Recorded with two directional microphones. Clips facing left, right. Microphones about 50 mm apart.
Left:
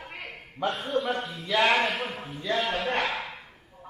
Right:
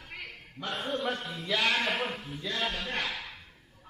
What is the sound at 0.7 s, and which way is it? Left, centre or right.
Speech, centre.